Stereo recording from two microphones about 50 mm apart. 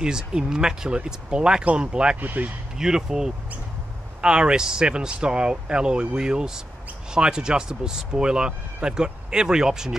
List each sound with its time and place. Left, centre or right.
0.0 s speech: centre
2.1 s speech: right
2.8 s speech: centre